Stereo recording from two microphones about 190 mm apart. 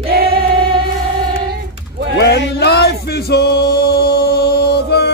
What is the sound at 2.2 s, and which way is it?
Music, 60° left (ahead or behind).